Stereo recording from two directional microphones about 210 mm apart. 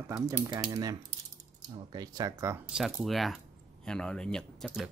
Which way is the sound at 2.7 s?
Centre (ahead or behind).